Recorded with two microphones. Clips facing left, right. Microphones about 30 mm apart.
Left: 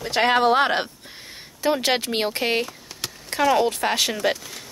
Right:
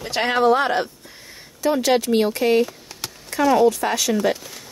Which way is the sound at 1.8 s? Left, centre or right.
Left.